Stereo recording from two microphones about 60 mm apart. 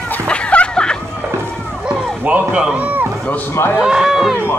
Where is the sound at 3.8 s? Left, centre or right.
Centre.